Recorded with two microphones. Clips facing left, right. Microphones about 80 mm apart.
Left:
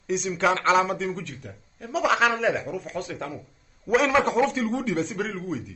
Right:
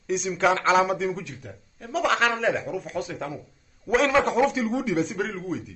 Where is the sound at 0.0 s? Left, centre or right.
Centre.